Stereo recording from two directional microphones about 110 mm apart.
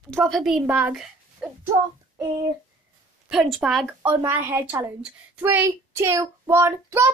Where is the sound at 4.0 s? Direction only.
20° right (ahead or behind).